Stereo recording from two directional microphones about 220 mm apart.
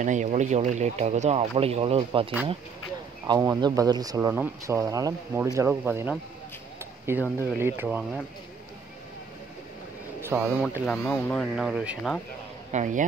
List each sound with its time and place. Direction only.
0.0 s speech: 35° right (ahead or behind); by 8.2 s 10° right (ahead or behind)
10.2 s a man's voice: 10° right (ahead or behind)
10.7 s speech: 5° left (ahead or behind)
12.7 s speech: 35° right (ahead or behind)